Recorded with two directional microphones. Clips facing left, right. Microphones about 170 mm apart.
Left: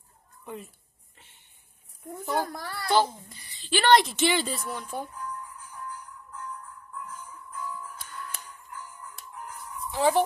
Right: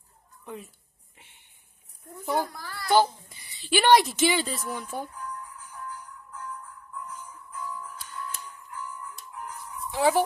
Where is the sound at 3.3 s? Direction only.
10° right (ahead or behind).